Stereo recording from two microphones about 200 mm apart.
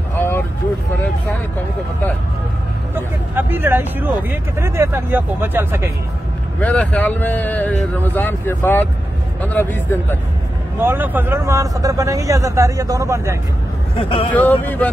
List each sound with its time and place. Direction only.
0.1 s vehicle: 10° left (ahead or behind)
2.9 s speech: 10° right (ahead or behind)
6.6 s speech: 5° left (ahead or behind)
10.8 s speech: 10° right (ahead or behind)
13.9 s speech: 25° left (ahead or behind)
14.3 s speech: 10° left (ahead or behind)